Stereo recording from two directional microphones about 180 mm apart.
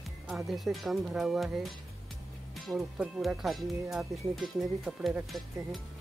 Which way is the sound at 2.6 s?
5° right (ahead or behind).